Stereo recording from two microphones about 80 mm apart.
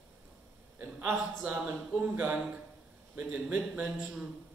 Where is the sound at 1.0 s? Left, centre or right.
Right.